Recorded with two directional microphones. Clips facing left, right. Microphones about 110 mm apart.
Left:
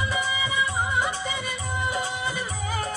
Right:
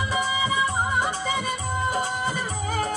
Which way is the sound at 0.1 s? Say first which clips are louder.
Right 3 dB; 40° right (ahead or behind).